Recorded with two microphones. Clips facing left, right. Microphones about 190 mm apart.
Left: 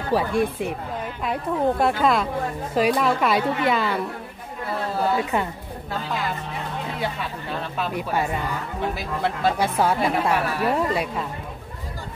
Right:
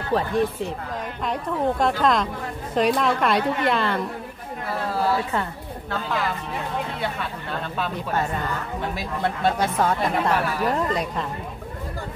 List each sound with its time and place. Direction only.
0.1 s a woman's voice: 10° left (ahead or behind)
5.1 s a woman's voice: 15° left (ahead or behind)
7.8 s a woman's voice: 10° left (ahead or behind)